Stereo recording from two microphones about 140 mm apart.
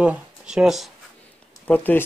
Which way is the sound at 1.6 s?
10° left (ahead or behind).